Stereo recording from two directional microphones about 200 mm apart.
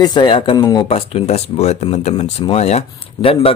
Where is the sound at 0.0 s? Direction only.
20° left (ahead or behind).